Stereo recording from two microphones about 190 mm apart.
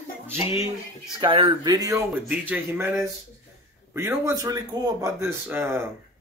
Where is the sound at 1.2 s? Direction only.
25° right (ahead or behind); by 5.9 s 10° right (ahead or behind).